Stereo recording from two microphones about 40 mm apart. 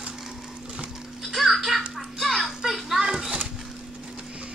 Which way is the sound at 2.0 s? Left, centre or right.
Centre.